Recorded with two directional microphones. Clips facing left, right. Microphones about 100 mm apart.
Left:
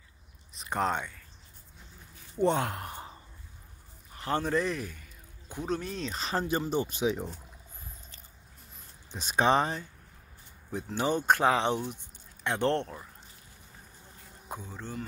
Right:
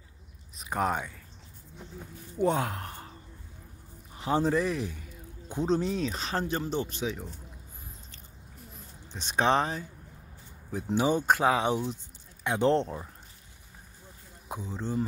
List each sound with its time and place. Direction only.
0.6 s speech: 5° right (ahead or behind)
2.3 s speech: 5° right (ahead or behind)
2.9 s sigh: 20° left (ahead or behind)
4.1 s a man's voice: 15° right (ahead or behind)
5.9 s speech: 5° right (ahead or behind); by 7.2 s 15° left (ahead or behind)
9.1 s speech: 5° left (ahead or behind)
11.0 s speech: 10° right (ahead or behind)
14.5 s speech: 15° right (ahead or behind)